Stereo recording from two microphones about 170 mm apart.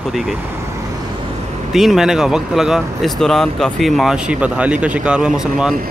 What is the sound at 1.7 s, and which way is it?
Speech, centre (ahead or behind).